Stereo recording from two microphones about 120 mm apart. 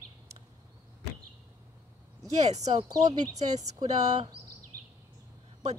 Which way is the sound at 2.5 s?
65° right (ahead or behind).